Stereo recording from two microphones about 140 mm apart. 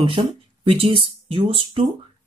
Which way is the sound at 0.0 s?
40° right (ahead or behind).